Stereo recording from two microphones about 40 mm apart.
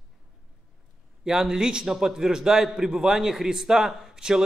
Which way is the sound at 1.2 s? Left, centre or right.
Centre.